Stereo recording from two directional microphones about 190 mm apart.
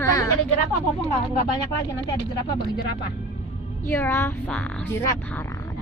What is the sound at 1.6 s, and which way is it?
Speech, 20° left (ahead or behind).